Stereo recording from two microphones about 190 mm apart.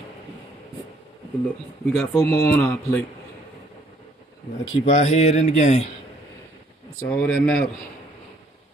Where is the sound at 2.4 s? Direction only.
15° left (ahead or behind).